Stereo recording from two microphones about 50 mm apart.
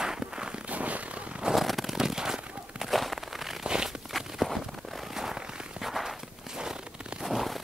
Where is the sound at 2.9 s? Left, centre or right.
Centre.